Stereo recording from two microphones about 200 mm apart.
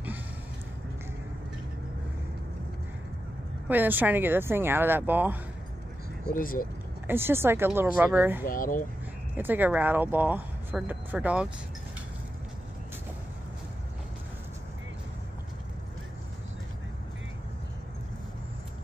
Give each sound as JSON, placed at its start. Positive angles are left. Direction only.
{"t": 3.6, "sound": "speech", "side_deg": -10}
{"t": 6.3, "sound": "speech", "side_deg": 45}
{"t": 7.1, "sound": "speech", "side_deg": -10}
{"t": 8.5, "sound": "speech", "side_deg": 45}
{"t": 9.4, "sound": "speech", "side_deg": -10}